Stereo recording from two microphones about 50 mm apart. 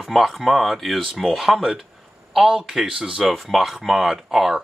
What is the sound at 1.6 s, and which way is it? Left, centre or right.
Speech, centre.